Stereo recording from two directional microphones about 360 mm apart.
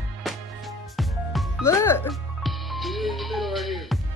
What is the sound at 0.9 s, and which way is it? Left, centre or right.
Music, centre.